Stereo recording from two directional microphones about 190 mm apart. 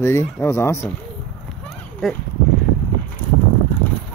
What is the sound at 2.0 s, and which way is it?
Speech, centre (ahead or behind).